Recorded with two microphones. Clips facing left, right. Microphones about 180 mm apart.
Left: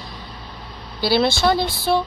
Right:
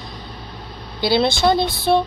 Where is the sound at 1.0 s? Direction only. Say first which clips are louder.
Right 1 dB; 20° right (ahead or behind).